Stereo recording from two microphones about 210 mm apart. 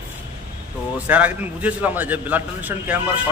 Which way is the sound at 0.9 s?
5° right (ahead or behind).